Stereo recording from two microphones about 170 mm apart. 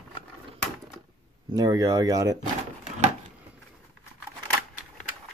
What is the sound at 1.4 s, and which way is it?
Speech, 20° right (ahead or behind).